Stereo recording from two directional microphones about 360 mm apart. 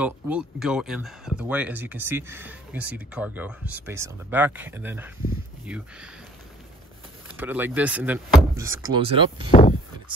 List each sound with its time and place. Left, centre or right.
0.0 s speech: centre
7.2 s speech: centre
9.5 s speech: centre